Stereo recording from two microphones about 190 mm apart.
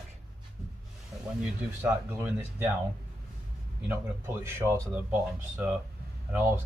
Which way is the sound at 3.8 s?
15° right (ahead or behind).